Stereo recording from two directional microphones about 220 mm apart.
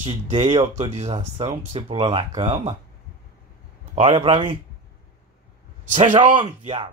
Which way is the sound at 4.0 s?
25° right (ahead or behind).